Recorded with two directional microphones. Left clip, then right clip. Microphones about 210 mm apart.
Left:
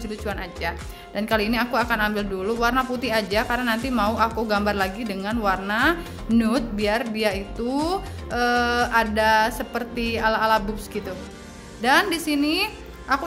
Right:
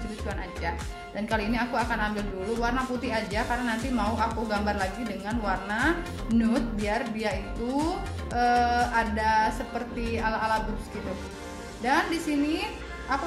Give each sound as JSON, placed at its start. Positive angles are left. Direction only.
{"t": 0.3, "sound": "speech", "side_deg": 30}
{"t": 11.8, "sound": "speech", "side_deg": 40}